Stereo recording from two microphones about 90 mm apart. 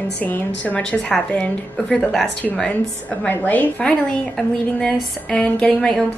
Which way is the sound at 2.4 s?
15° left (ahead or behind).